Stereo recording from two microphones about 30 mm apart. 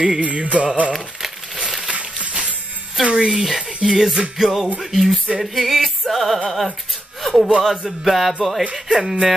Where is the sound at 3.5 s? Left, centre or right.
Centre.